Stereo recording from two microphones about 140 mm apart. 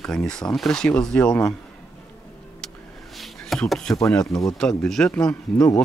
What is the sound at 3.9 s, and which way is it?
Speech, 20° left (ahead or behind).